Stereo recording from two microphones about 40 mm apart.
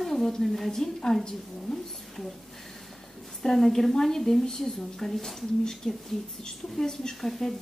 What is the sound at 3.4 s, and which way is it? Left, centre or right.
A woman's voice, centre.